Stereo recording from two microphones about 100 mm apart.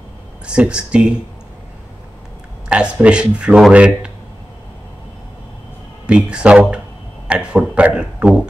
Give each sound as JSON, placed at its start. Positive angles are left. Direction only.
{"t": 0.5, "sound": "speech", "side_deg": -10}
{"t": 2.7, "sound": "speech", "side_deg": -10}
{"t": 6.0, "sound": "speech", "side_deg": -10}